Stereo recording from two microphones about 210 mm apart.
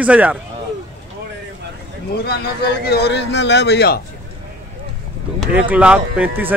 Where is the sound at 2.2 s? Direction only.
50° left (ahead or behind).